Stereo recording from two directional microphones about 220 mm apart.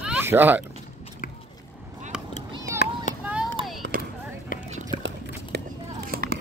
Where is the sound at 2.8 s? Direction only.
45° left (ahead or behind).